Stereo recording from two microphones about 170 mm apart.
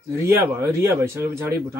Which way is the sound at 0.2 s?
15° right (ahead or behind).